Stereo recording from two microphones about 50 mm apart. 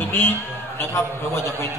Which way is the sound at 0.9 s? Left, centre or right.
Left.